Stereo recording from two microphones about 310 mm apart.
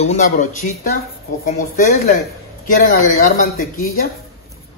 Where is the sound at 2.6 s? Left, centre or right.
Left.